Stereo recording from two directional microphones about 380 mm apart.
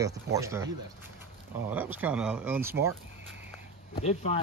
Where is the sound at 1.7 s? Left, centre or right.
Centre.